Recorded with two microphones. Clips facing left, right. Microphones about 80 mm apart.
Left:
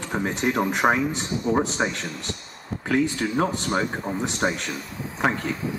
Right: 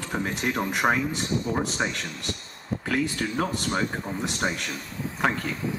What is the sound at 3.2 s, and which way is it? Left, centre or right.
Speech, centre.